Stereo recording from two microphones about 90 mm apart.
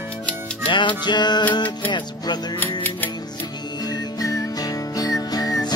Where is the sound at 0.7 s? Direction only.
65° left (ahead or behind).